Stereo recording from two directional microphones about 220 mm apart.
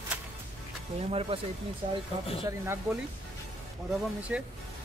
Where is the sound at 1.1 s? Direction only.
25° right (ahead or behind).